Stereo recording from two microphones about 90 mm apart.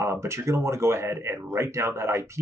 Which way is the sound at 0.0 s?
30° right (ahead or behind).